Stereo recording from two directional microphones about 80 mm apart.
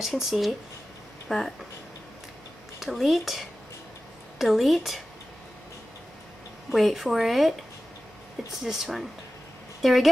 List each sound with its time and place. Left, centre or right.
0.0 s speech: centre
2.8 s speech: centre
6.7 s speech: centre
8.6 s a woman's voice: centre